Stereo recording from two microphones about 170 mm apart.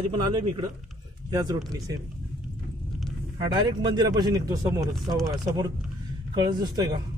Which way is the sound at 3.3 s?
25° right (ahead or behind).